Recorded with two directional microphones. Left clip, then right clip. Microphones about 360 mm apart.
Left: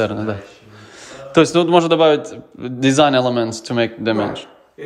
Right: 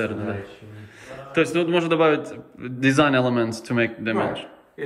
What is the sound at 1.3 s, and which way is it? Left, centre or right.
Speech, centre.